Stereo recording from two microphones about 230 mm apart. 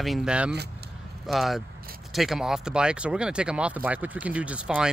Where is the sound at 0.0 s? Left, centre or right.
Centre.